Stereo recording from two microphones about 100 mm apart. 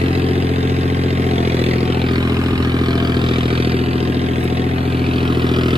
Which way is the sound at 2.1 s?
40° right (ahead or behind).